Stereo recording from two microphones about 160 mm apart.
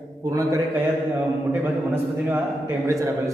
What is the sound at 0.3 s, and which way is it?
Speech, 20° right (ahead or behind).